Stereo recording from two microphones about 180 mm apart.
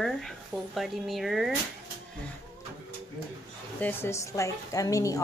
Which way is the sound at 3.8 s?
10° left (ahead or behind).